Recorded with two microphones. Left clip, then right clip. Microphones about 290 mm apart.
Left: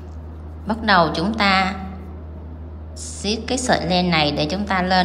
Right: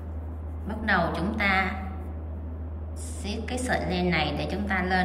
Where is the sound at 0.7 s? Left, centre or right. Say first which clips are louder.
Left 9 dB; centre.